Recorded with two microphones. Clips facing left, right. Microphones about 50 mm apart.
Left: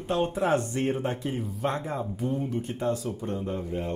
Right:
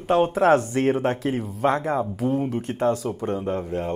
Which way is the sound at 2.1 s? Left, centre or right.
Right.